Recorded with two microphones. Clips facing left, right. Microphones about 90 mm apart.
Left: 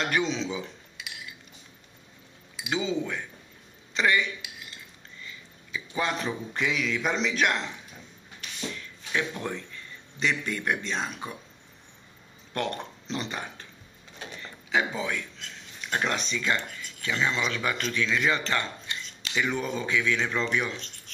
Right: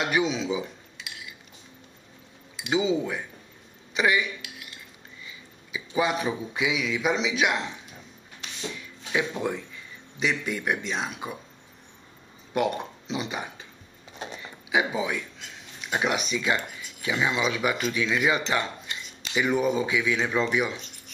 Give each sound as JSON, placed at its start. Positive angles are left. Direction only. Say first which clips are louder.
{"t": 0.0, "sound": "speech", "louder": "right 2 dB", "side_deg": -10}
{"t": 2.7, "sound": "a man's voice", "louder": "right 4 dB", "side_deg": -10}
{"t": 8.7, "sound": "speech", "louder": "right 3 dB", "side_deg": -10}
{"t": 12.5, "sound": "speech", "louder": "right 5 dB", "side_deg": -5}
{"t": 14.1, "sound": "a sound", "louder": "right 4 dB", "side_deg": -20}
{"t": 14.4, "sound": "speech", "louder": "right 1 dB", "side_deg": -10}